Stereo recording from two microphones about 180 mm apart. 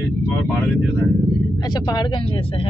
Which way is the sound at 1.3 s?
20° left (ahead or behind).